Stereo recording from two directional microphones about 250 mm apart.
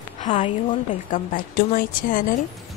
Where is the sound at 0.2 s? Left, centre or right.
Left.